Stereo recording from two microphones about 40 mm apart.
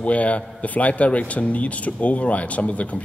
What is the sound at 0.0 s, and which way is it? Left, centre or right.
A man's voice, left.